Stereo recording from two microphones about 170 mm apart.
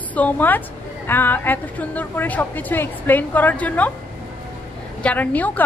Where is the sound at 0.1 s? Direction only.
10° left (ahead or behind).